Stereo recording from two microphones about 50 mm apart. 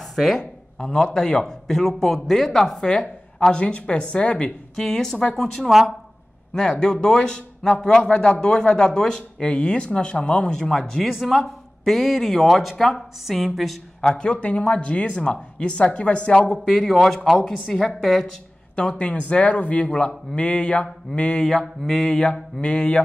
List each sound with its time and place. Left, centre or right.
0.1 s speech: centre
0.4 s speech: centre
3.5 s speech: left
4.7 s speech: centre
5.7 s speech: centre
6.5 s speech: centre
14.1 s speech: centre
16.5 s speech: centre
18.8 s speech: left
21.5 s speech: centre
22.1 s speech: left